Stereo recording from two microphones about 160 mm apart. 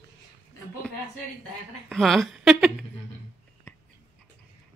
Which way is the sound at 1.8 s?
Centre (ahead or behind).